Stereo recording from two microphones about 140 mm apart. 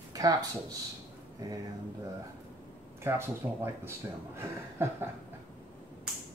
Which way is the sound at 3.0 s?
15° right (ahead or behind).